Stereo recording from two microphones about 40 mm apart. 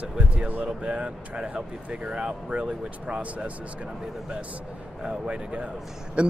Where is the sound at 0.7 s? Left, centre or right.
Right.